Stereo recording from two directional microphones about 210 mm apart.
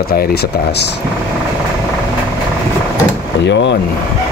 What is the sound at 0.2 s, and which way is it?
Speech, 50° left (ahead or behind).